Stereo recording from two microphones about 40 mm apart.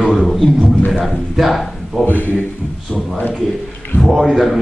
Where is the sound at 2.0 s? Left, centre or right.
Left.